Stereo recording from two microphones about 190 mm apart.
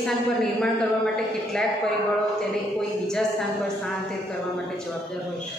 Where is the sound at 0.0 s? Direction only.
Centre (ahead or behind).